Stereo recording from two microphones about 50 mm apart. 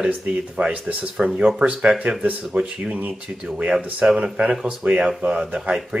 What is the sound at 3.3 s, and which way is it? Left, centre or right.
Speech, right.